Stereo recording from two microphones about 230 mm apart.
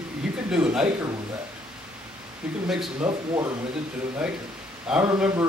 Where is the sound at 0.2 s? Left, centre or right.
Centre.